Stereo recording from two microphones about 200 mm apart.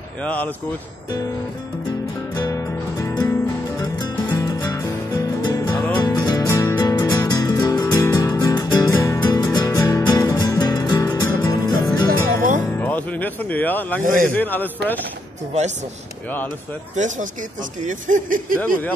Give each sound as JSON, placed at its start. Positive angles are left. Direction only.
{"t": 0.2, "sound": "speech", "side_deg": 5}
{"t": 2.3, "sound": "music", "side_deg": 15}
{"t": 12.1, "sound": "music", "side_deg": -40}
{"t": 12.7, "sound": "speech", "side_deg": 10}
{"t": 14.0, "sound": "a man's voice", "side_deg": -40}
{"t": 14.3, "sound": "speech", "side_deg": 10}
{"t": 16.9, "sound": "speech", "side_deg": -40}